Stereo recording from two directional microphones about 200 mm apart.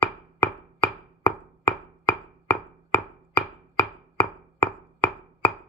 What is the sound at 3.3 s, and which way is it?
Chopping, 15° left (ahead or behind).